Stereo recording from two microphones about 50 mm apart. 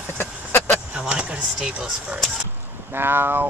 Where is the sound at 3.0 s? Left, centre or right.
Right.